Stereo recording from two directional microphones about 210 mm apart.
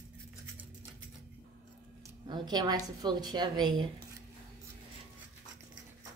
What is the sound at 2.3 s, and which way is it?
A woman's voice, 20° right (ahead or behind).